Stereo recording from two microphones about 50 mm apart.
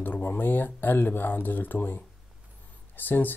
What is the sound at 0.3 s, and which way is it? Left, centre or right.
Speech, left.